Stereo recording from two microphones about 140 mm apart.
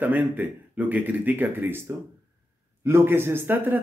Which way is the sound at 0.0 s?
10° right (ahead or behind).